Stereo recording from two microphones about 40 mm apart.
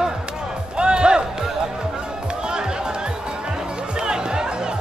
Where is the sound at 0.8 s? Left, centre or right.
Right.